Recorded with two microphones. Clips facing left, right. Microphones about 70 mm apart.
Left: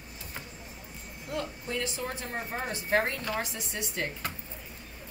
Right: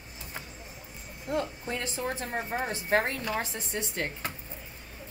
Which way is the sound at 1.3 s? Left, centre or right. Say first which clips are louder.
Right 3 dB; right.